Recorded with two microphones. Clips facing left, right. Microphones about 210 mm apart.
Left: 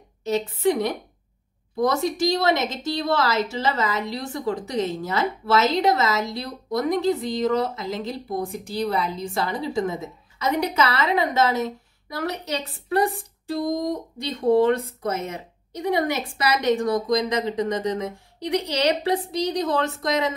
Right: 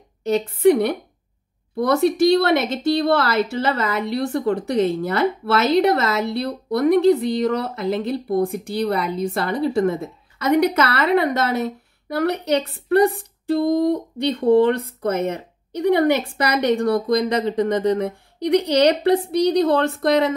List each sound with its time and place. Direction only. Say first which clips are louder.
0.2 s a woman's voice: right 6 dB; 60° right (ahead or behind)